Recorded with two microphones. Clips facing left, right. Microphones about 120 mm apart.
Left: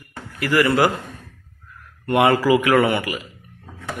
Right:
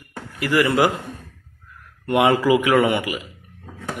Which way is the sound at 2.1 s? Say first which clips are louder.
Even; 15° right (ahead or behind).